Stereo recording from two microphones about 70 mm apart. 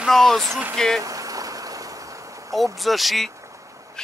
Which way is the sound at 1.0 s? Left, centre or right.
Right.